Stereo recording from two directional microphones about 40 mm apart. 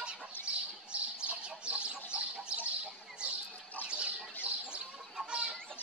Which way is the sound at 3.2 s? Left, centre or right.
Right.